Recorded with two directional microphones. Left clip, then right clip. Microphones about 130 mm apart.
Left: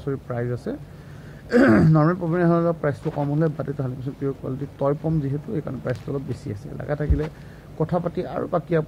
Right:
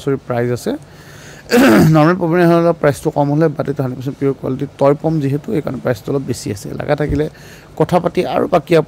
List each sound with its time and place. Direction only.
0.1 s speech: 50° right (ahead or behind); by 2.8 s 35° right (ahead or behind)
2.8 s speech: 50° right (ahead or behind)